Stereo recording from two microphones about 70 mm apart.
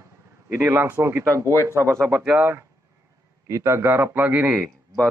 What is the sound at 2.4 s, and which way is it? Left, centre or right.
A man's voice, right.